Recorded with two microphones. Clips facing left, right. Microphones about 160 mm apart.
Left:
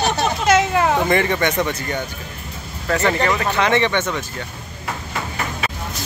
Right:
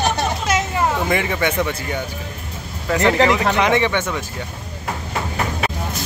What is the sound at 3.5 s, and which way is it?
Speech, 10° right (ahead or behind).